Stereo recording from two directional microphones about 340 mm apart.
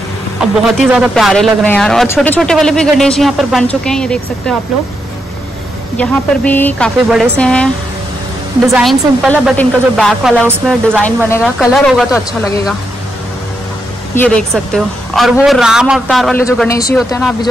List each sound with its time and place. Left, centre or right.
0.7 s a woman's voice: centre
5.9 s a woman's voice: centre
8.7 s a woman's voice: centre
14.1 s a woman's voice: centre